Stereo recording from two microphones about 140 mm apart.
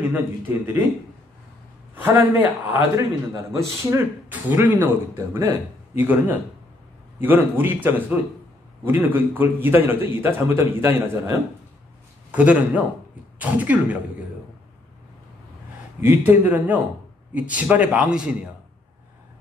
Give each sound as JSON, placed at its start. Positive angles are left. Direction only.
{"t": 0.1, "sound": "a man's voice", "side_deg": -15}
{"t": 2.4, "sound": "a man's voice", "side_deg": -15}
{"t": 12.3, "sound": "a man's voice", "side_deg": -10}
{"t": 16.0, "sound": "a man's voice", "side_deg": -15}